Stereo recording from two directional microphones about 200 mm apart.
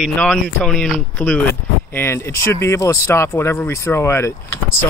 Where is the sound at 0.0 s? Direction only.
Centre (ahead or behind).